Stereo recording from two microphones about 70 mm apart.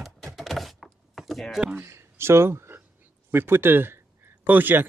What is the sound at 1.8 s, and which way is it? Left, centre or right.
Speech, right.